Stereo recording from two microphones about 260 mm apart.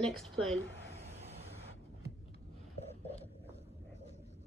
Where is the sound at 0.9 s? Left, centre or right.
Right.